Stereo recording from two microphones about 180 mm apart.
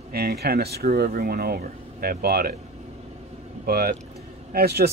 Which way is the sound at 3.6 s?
60° right (ahead or behind).